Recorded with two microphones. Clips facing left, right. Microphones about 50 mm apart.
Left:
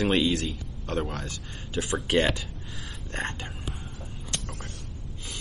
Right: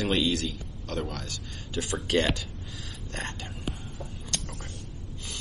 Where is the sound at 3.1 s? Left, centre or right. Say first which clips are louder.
Left 4 dB; left.